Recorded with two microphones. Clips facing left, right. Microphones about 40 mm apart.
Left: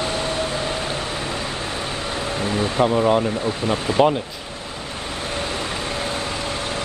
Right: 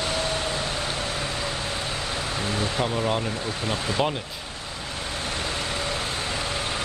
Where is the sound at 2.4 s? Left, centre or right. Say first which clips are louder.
Left 7 dB; left.